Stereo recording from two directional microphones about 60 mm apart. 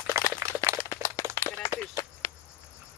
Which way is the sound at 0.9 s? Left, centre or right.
Left.